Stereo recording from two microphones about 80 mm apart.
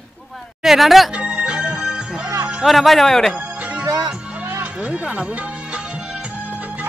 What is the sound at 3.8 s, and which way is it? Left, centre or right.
Music, right.